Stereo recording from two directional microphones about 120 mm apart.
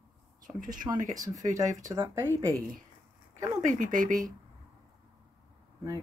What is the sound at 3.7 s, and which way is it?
Speech, 90° right.